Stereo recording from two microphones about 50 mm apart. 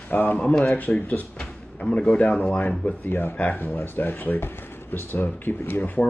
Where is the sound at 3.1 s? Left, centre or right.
Left.